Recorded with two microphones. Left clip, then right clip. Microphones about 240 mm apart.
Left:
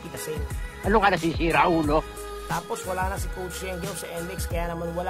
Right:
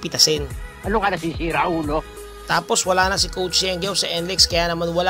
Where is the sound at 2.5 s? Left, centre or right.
Right.